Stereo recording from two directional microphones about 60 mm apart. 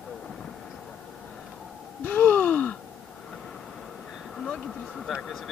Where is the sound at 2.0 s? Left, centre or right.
Left.